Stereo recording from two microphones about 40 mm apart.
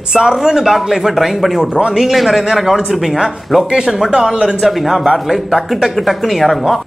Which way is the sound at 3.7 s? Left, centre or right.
Centre.